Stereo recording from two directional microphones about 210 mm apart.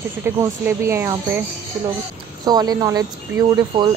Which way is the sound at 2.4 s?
20° right (ahead or behind).